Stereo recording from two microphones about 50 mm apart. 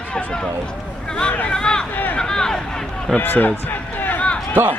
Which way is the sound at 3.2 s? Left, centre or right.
Left.